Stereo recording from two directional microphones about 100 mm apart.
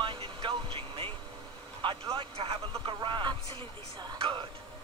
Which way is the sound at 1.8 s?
55° right (ahead or behind).